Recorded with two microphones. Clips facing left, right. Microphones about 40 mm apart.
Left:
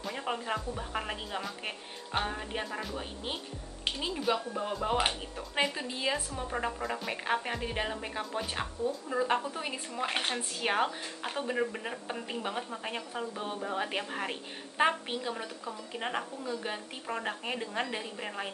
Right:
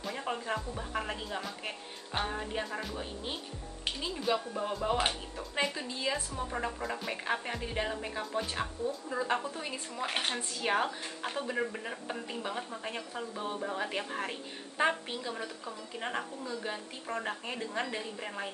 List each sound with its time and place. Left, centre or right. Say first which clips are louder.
0.0 s speech: left 1 dB; centre
4.2 s a woman's voice: even; centre
14.8 s a woman's voice: left 2 dB; left
15.3 s speech: left 1 dB; centre